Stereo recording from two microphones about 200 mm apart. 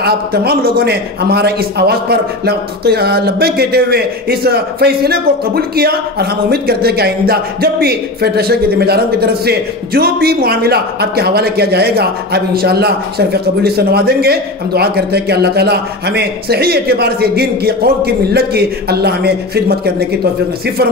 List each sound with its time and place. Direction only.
0.0 s a man's voice: 50° right (ahead or behind)